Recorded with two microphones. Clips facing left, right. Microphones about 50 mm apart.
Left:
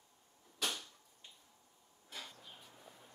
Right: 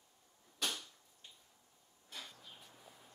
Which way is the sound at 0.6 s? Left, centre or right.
Centre.